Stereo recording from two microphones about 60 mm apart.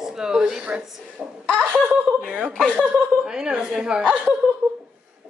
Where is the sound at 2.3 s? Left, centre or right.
Right.